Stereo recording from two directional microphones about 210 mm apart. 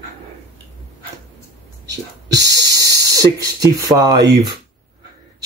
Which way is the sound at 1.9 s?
55° right (ahead or behind).